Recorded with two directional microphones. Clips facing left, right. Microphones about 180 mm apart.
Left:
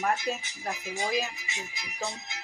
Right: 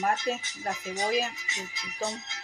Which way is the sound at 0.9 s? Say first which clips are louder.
Right 2 dB; 40° right (ahead or behind).